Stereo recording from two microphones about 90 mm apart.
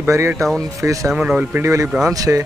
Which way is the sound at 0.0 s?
30° right (ahead or behind).